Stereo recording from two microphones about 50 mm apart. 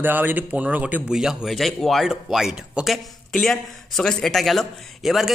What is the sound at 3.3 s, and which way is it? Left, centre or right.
Speech, centre.